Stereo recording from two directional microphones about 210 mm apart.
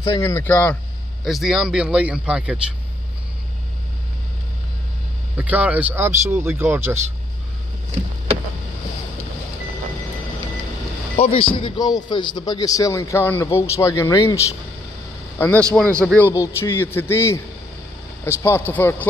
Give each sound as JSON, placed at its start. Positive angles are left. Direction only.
{"t": 0.2, "sound": "a man's voice", "side_deg": 10}
{"t": 5.4, "sound": "speech", "side_deg": -5}
{"t": 11.1, "sound": "a man's voice", "side_deg": 25}